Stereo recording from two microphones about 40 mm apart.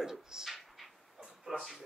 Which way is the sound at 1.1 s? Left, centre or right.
Centre.